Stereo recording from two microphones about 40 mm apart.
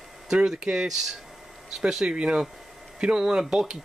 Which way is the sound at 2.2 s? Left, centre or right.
Right.